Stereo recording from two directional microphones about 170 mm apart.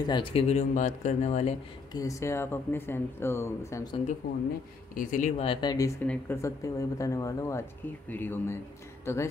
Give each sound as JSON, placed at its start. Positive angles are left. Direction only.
{"t": 0.0, "sound": "speech", "side_deg": 30}
{"t": 2.0, "sound": "speech", "side_deg": 20}
{"t": 4.9, "sound": "speech", "side_deg": 50}
{"t": 5.4, "sound": "speech", "side_deg": 30}
{"t": 6.0, "sound": "speech", "side_deg": 15}